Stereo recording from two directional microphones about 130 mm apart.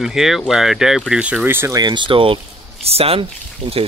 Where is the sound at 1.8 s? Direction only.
35° right (ahead or behind).